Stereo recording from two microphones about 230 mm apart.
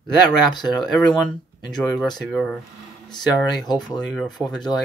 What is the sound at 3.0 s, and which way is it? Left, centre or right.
Speech, centre.